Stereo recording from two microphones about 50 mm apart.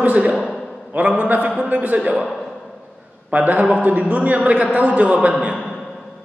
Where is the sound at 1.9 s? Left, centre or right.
Right.